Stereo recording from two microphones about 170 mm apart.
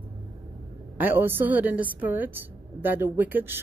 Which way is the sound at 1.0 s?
10° right (ahead or behind).